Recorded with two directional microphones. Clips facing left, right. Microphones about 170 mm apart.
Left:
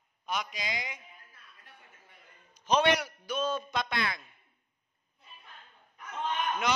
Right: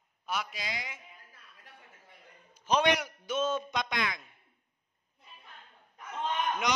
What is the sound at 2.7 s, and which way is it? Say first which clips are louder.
Speech: left 1 dB; 10° right (ahead or behind).